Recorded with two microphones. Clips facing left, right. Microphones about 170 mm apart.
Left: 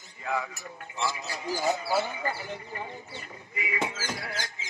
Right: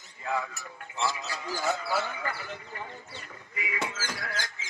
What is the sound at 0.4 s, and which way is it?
Speech, 15° left (ahead or behind).